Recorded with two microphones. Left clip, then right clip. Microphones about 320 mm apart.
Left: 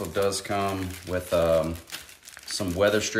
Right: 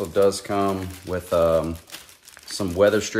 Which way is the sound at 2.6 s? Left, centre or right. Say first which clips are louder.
Right 4 dB; right.